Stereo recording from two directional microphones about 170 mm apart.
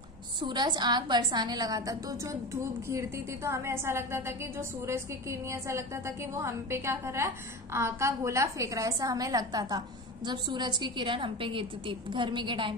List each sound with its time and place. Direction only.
0.4 s a woman's voice: 25° right (ahead or behind)